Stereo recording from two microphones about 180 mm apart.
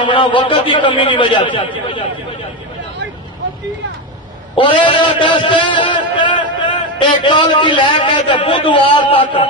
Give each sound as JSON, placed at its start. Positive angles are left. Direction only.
{"t": 0.0, "sound": "a man's voice", "side_deg": 25}
{"t": 4.6, "sound": "a man's voice", "side_deg": 25}